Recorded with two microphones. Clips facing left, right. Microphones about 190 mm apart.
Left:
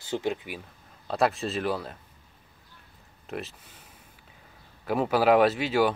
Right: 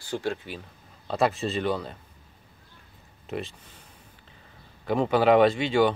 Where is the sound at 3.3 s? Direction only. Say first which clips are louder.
Right 3 dB; centre (ahead or behind).